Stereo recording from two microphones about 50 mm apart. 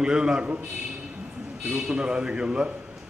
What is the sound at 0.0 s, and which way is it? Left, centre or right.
Speech, centre.